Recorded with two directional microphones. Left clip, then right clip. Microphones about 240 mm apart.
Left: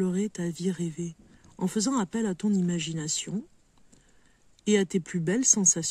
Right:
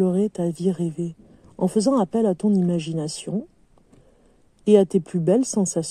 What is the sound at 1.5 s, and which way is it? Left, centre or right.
Speech, left.